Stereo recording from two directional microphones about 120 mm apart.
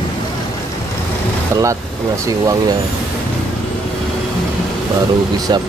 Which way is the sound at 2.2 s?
30° right (ahead or behind).